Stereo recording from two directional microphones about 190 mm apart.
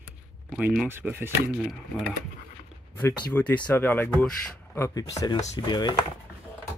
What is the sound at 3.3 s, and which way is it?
Speech, 10° left (ahead or behind).